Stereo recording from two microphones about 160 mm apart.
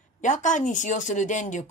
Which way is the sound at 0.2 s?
50° left (ahead or behind).